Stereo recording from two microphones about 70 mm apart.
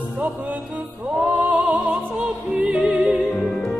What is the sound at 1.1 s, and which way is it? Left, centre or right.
Music, centre.